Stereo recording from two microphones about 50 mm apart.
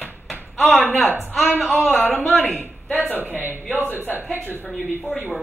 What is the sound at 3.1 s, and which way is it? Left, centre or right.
Speech, right.